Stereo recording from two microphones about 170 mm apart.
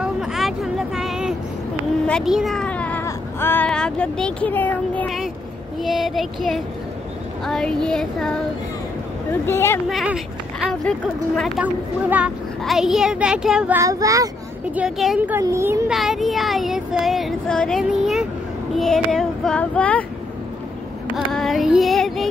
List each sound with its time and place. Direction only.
0.0 s vehicle: centre (ahead or behind)
2.0 s a sound: centre (ahead or behind)
3.1 s speech: 15° left (ahead or behind)
5.8 s child singing: centre (ahead or behind)
9.3 s speech: 15° left (ahead or behind)
9.8 s speech: centre (ahead or behind)
11.6 s child singing: 10° right (ahead or behind)
13.7 s child singing: 20° right (ahead or behind)
14.8 s speech: 5° right (ahead or behind)
15.9 s child singing: centre (ahead or behind)
21.3 s child singing: centre (ahead or behind)